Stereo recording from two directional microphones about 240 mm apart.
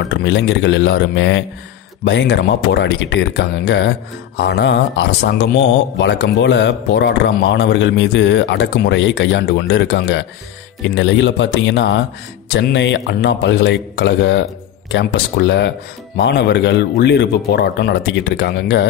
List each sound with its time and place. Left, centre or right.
0.1 s speech: left